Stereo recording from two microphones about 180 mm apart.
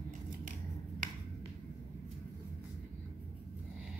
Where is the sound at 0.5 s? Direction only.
45° right (ahead or behind).